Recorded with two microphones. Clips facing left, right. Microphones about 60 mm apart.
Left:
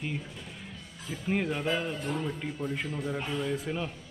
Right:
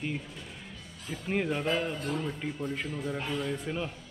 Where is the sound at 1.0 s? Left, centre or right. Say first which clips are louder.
Left 1 dB; centre.